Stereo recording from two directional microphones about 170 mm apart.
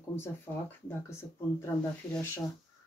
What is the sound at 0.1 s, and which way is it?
Speech, 15° left (ahead or behind).